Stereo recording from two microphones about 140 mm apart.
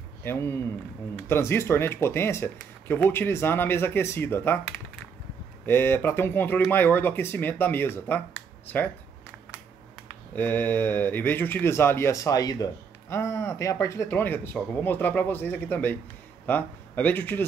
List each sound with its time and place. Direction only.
0.2 s a man's voice: 15° left (ahead or behind)
10.3 s speech: 15° left (ahead or behind)